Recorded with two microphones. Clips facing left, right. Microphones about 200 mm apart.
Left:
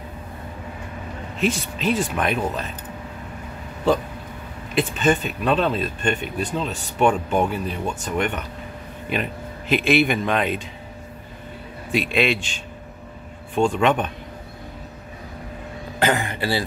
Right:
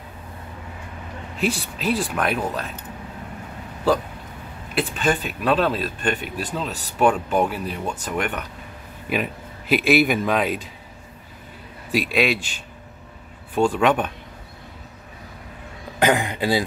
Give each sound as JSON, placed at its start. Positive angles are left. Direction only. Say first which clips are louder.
{"t": 1.8, "sound": "speech", "louder": "left 1 dB", "side_deg": 0}
{"t": 4.7, "sound": "speech", "louder": "left 2 dB", "side_deg": 0}
{"t": 11.9, "sound": "speech", "louder": "even", "side_deg": -5}
{"t": 16.0, "sound": "a man's voice", "louder": "right 2 dB", "side_deg": -15}